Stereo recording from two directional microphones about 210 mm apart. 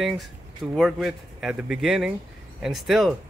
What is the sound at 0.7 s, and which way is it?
Speech, centre (ahead or behind).